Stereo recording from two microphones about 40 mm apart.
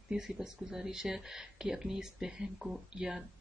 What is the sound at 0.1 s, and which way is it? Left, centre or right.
Speech, centre.